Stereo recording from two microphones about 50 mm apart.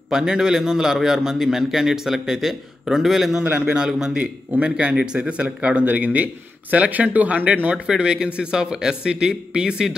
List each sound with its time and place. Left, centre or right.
0.1 s a man's voice: centre; by 7.7 s right
7.7 s a man's voice: centre